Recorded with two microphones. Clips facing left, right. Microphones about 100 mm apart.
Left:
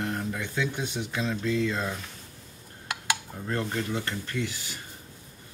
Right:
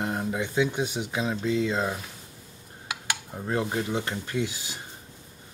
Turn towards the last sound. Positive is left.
turn(degrees=-15)  # may be behind; listen again after turning